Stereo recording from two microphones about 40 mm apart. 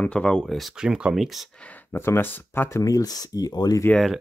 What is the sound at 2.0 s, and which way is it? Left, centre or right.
Speech, left.